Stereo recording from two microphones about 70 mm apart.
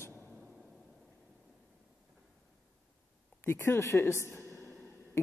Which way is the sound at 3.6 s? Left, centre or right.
Left.